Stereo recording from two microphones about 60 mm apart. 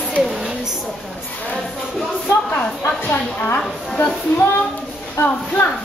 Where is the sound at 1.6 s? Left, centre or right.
Centre.